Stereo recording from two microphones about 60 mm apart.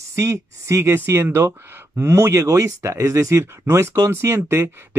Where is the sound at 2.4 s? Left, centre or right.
Right.